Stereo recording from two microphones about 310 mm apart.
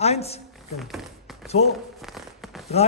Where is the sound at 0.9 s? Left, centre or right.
Centre.